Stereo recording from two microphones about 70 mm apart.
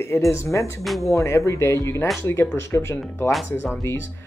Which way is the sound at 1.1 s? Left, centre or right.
Left.